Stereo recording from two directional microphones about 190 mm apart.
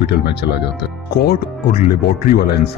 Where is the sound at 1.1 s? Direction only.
55° left (ahead or behind).